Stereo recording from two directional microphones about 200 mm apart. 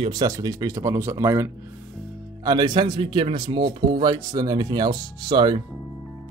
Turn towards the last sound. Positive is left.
turn(degrees=-20)  # may be behind; listen again after turning